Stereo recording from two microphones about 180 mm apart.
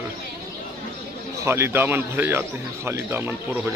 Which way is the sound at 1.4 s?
15° right (ahead or behind).